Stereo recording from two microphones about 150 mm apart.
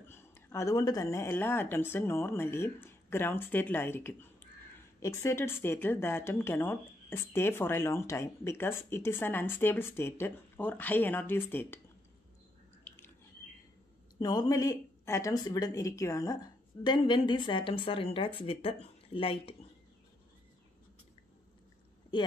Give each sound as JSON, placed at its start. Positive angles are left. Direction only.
{"t": 0.0, "sound": "speech", "side_deg": 15}
{"t": 12.9, "sound": "a sound", "side_deg": 10}
{"t": 14.2, "sound": "a woman's voice", "side_deg": 25}